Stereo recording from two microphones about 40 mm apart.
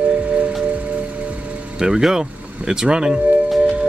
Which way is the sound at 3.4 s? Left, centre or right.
Centre.